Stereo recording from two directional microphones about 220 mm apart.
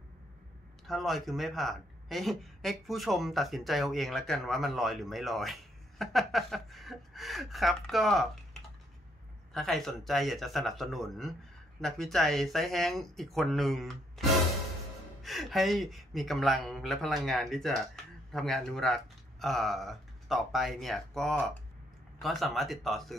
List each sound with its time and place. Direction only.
0.8 s speech: centre (ahead or behind)
9.5 s speech: centre (ahead or behind)
15.2 s speech: centre (ahead or behind)